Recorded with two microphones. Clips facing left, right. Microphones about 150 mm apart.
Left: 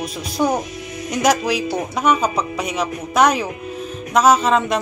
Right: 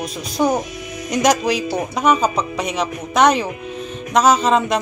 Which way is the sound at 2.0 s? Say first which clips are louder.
Right 1 dB; 30° right (ahead or behind).